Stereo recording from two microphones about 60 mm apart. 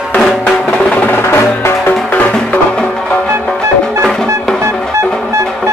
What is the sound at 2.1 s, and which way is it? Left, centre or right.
Music, left.